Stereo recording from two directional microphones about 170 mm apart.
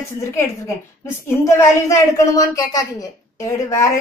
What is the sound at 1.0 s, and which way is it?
A woman's voice, 15° left (ahead or behind).